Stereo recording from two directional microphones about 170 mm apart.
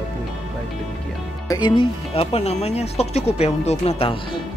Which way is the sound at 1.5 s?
30° left (ahead or behind).